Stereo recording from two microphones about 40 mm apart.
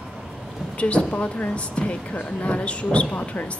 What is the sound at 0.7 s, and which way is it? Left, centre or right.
Speech, left.